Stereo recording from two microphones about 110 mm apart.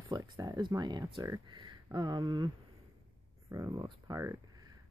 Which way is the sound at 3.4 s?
25° right (ahead or behind).